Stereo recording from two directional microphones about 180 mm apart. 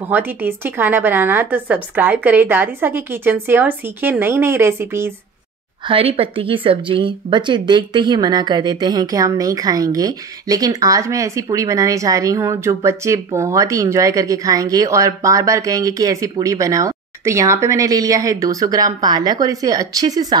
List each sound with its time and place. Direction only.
0.1 s a woman's voice: 10° right (ahead or behind)
5.9 s speech: 30° right (ahead or behind)